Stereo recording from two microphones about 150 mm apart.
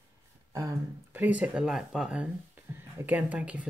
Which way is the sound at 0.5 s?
20° right (ahead or behind).